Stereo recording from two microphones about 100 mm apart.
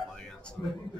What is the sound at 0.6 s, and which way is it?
Speech, 15° left (ahead or behind).